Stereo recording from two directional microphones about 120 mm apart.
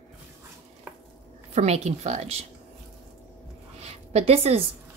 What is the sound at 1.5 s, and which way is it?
Speech, 65° right (ahead or behind).